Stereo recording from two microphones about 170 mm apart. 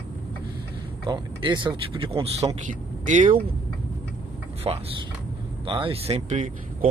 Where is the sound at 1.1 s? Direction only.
25° right (ahead or behind).